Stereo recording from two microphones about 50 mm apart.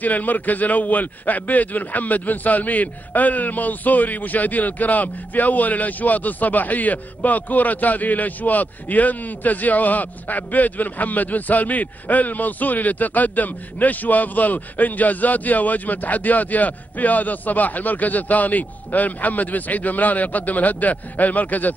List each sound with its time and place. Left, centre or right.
0.0 s a man's voice: left